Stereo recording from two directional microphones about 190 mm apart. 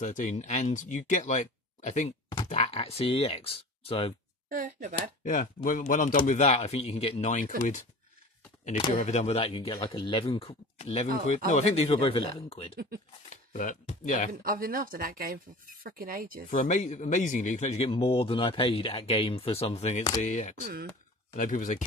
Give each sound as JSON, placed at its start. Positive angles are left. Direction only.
{"t": 0.0, "sound": "speech", "side_deg": 40}
{"t": 4.5, "sound": "speech", "side_deg": -45}
{"t": 5.2, "sound": "speech", "side_deg": 45}
{"t": 8.9, "sound": "speech", "side_deg": 40}
{"t": 13.5, "sound": "speech", "side_deg": 40}
{"t": 14.4, "sound": "speech", "side_deg": -50}
{"t": 16.4, "sound": "speech", "side_deg": 45}